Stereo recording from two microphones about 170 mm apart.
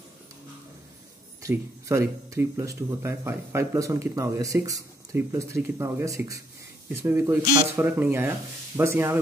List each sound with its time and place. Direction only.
1.4 s speech: 15° right (ahead or behind)